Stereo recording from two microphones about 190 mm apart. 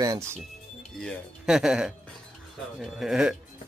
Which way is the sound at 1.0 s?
Centre (ahead or behind).